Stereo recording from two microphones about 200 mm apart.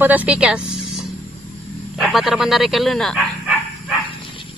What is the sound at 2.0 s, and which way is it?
Speech, centre (ahead or behind).